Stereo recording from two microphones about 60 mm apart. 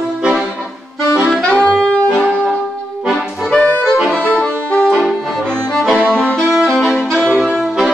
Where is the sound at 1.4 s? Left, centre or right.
Centre.